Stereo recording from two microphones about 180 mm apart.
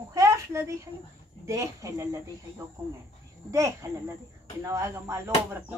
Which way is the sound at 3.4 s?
15° right (ahead or behind).